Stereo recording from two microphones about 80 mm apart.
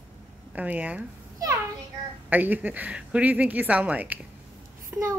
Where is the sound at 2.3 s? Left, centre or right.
Right.